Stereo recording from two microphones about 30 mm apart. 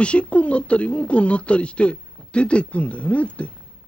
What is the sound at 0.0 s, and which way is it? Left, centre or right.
Speech, left.